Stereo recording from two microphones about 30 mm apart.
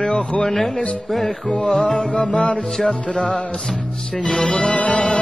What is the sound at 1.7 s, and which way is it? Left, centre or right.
Music, left.